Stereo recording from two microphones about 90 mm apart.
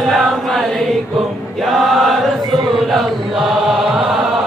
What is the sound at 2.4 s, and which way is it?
Chant, 45° right (ahead or behind).